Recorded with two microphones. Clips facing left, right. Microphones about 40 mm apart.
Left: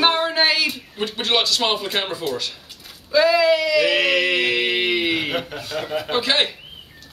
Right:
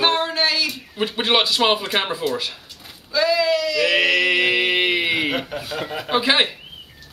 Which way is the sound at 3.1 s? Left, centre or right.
Centre.